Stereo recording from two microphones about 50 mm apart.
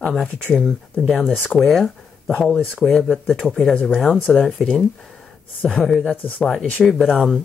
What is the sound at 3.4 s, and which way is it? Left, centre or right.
Speech, centre.